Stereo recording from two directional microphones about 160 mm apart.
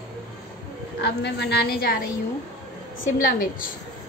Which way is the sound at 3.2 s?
60° left (ahead or behind).